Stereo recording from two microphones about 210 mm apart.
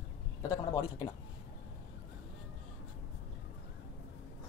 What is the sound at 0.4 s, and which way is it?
Speech, 20° left (ahead or behind).